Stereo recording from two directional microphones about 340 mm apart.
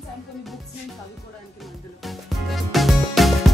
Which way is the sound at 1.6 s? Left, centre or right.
Centre.